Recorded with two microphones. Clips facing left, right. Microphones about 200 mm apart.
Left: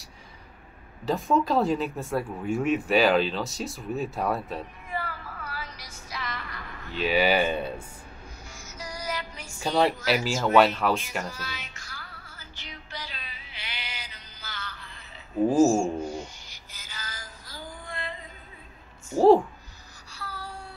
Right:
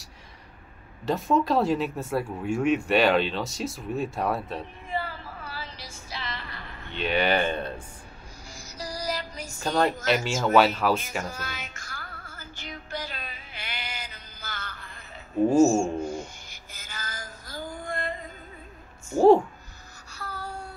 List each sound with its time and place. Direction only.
1.0 s speech: centre (ahead or behind)
4.9 s female singing: 30° right (ahead or behind)
6.9 s speech: 5° left (ahead or behind)
8.5 s music: 35° right (ahead or behind)
9.6 s speech: 5° left (ahead or behind)
11.2 s music: 50° right (ahead or behind)
15.5 s mantra: 25° right (ahead or behind)
16.1 s music: 50° right (ahead or behind)
19.1 s speech: centre (ahead or behind)
20.1 s music: 45° right (ahead or behind)